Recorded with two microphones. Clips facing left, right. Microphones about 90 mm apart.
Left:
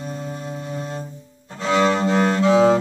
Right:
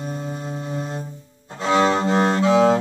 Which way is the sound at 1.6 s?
20° right (ahead or behind).